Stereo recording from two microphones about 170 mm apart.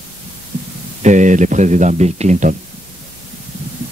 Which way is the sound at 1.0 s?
45° right (ahead or behind).